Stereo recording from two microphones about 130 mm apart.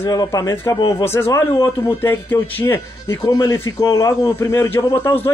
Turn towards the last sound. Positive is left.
turn(degrees=20)  # may be behind; listen again after turning